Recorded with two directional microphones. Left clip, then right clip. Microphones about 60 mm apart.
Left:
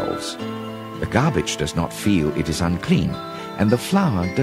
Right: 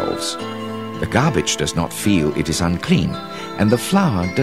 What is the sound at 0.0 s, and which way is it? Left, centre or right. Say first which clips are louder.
Music: right 3 dB; right.